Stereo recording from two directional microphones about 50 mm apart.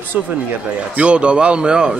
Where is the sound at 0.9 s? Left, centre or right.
Right.